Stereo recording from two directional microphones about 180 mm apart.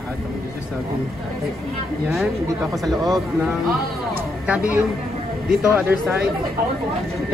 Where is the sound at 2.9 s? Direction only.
20° right (ahead or behind).